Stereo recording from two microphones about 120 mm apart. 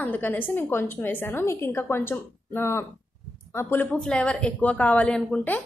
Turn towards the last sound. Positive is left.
turn(degrees=10)  # may be behind; listen again after turning